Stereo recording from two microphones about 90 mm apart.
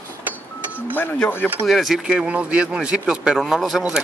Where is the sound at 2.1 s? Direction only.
10° right (ahead or behind).